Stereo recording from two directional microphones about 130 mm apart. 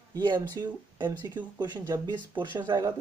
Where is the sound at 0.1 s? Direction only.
35° right (ahead or behind).